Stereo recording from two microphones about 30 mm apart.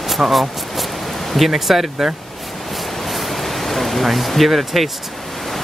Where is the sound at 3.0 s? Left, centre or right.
Centre.